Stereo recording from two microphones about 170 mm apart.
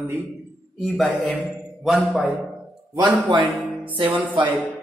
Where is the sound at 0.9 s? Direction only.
10° left (ahead or behind).